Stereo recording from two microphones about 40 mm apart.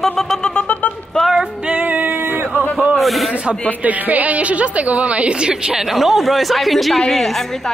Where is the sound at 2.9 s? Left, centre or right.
Centre.